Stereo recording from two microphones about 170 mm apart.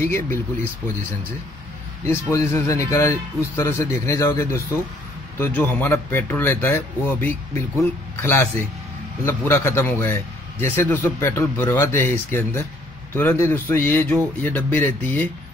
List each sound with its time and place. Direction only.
0.0 s a man's voice: 15° left (ahead or behind)
2.0 s a man's voice: 15° left (ahead or behind)